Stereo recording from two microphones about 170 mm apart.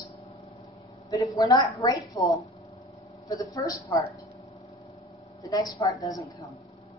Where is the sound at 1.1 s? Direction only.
20° left (ahead or behind).